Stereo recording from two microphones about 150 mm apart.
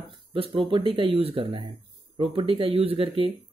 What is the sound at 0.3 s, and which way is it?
Speech, 35° right (ahead or behind).